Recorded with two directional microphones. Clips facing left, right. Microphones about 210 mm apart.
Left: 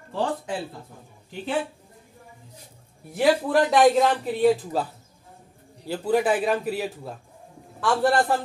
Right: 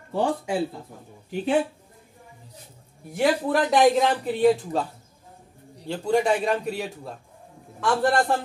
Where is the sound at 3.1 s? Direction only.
Centre (ahead or behind).